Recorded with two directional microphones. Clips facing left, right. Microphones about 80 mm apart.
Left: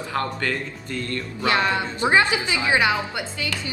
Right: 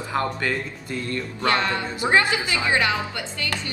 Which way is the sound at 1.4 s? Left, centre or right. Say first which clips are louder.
Left 2 dB; centre.